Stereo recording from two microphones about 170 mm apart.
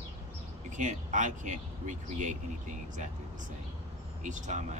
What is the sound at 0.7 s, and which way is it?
Speech, 45° right (ahead or behind).